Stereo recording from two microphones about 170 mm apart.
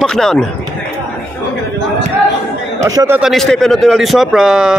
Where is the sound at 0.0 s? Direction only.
5° left (ahead or behind).